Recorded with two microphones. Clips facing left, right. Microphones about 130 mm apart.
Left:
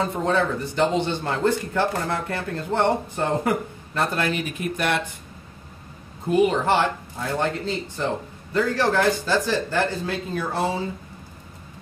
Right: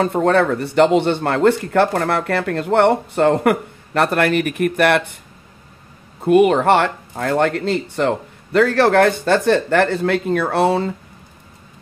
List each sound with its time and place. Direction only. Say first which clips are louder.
0.0 s speech: right 7 dB; 65° right (ahead or behind)
6.2 s speech: right 7 dB; 65° right (ahead or behind)